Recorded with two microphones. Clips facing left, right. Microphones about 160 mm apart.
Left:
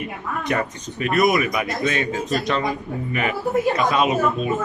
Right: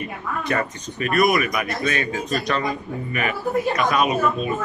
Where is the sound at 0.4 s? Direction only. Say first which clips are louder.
Left 1 dB; 20° left (ahead or behind).